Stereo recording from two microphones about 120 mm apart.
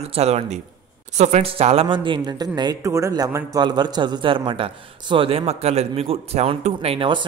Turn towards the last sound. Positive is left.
turn(degrees=-50)  # may be behind; listen again after turning